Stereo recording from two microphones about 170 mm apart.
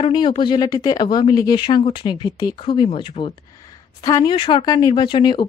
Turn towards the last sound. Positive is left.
turn(degrees=30)  # may be behind; listen again after turning